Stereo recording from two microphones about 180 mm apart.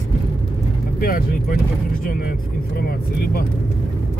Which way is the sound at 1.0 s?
50° left (ahead or behind).